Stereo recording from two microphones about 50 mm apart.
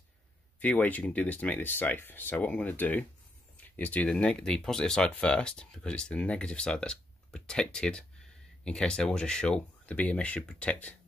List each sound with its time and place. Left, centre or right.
0.6 s speech: left
2.3 s speech: left
3.5 s a sound: left
4.1 s speech: centre